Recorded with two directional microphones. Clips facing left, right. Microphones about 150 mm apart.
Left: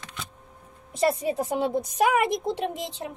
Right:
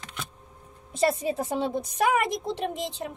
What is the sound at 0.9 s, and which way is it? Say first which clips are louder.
A woman's voice: left 1 dB; centre (ahead or behind).